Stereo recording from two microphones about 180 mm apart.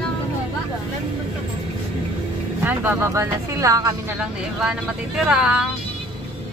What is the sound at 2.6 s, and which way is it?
Speech, 10° right (ahead or behind).